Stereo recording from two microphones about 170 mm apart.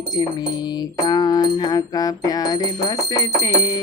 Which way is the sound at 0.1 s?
25° left (ahead or behind).